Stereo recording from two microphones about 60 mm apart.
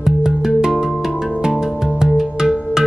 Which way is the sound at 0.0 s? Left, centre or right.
Centre.